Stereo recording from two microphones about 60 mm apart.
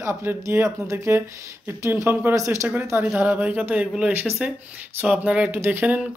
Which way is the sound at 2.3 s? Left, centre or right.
Right.